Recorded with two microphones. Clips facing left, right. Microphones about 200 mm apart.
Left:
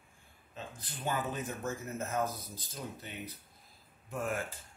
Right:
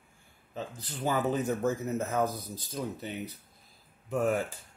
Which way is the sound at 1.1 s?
70° right (ahead or behind).